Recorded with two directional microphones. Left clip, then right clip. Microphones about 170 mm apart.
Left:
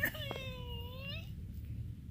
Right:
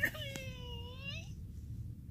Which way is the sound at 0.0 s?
5° left (ahead or behind).